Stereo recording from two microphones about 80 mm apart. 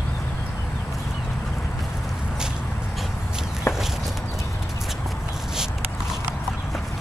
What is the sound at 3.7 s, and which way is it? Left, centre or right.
Walk, left.